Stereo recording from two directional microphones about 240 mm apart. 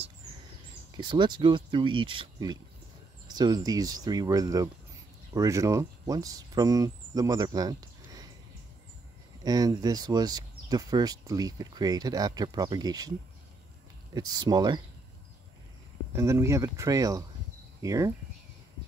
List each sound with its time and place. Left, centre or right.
0.9 s speech: centre
9.4 s speech: centre
14.1 s speech: centre
16.2 s speech: centre